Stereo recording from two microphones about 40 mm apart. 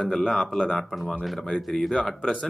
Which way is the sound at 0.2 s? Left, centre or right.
Centre.